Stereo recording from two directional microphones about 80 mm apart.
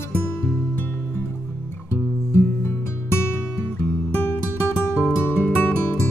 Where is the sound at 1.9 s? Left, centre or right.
Left.